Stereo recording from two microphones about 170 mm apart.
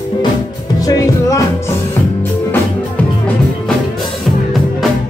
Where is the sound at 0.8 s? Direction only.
20° left (ahead or behind).